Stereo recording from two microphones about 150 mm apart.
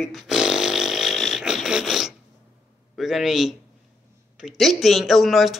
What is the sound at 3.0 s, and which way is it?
A man's voice, centre (ahead or behind).